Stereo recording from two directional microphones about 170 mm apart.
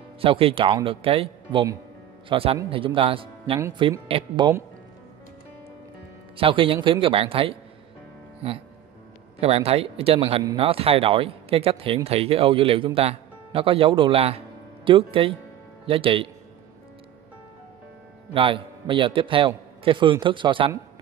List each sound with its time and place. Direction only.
0.2 s speech: 35° right (ahead or behind)
3.5 s a man's voice: 20° right (ahead or behind)
6.3 s speech: 30° right (ahead or behind)
18.3 s a man's voice: 30° right (ahead or behind)